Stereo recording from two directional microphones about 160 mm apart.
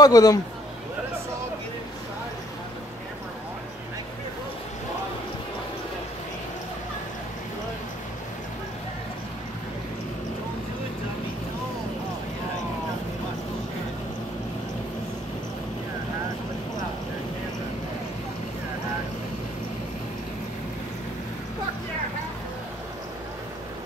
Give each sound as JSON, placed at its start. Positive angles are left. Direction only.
{"t": 0.0, "sound": "speech", "side_deg": 25}